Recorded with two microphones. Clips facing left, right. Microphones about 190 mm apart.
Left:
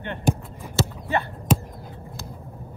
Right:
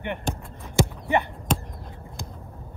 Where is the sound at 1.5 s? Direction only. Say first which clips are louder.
Left 4 dB; 5° left (ahead or behind).